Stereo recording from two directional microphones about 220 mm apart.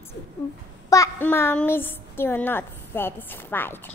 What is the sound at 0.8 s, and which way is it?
A child's voice, 15° left (ahead or behind).